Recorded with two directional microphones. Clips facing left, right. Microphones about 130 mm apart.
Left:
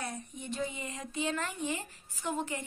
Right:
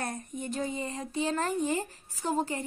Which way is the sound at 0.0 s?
45° right (ahead or behind).